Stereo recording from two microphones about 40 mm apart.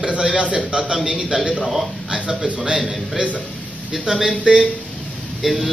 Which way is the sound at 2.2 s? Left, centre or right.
Right.